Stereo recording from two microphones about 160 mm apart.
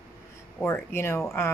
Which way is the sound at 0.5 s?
15° left (ahead or behind).